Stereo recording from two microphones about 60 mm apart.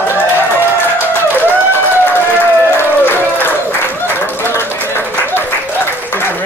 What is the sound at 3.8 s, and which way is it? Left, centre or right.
Applause, left.